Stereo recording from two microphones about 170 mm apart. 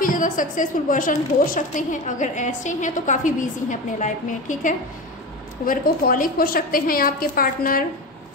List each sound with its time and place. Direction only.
0.0 s a woman's voice: 50° left (ahead or behind)